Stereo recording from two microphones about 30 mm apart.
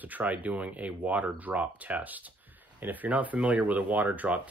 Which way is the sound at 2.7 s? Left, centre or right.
Right.